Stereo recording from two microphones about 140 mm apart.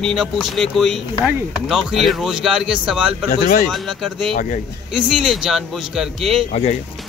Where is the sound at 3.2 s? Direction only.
65° left (ahead or behind).